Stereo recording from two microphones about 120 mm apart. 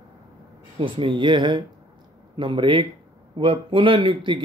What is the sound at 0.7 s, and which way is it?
Speech, 45° right (ahead or behind).